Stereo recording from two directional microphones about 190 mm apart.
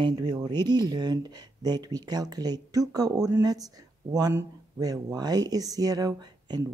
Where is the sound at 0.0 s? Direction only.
20° right (ahead or behind).